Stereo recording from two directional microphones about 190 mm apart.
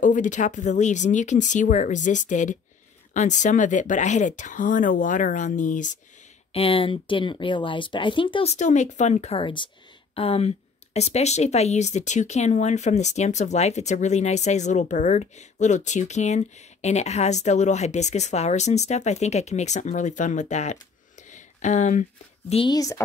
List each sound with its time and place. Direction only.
0.0 s speech: 40° left (ahead or behind)
6.5 s speech: 30° left (ahead or behind)
21.3 s a sound: 40° left (ahead or behind)
22.5 s speech: 25° left (ahead or behind)